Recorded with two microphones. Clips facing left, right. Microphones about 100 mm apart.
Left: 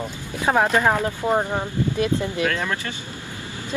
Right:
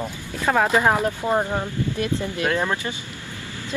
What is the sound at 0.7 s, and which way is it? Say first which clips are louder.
Speech: right 1 dB; 10° right (ahead or behind).